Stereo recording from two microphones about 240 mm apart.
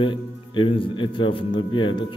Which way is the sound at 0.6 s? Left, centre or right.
Left.